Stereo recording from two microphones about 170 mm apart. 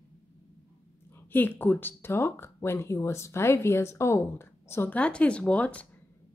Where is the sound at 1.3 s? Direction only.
10° left (ahead or behind).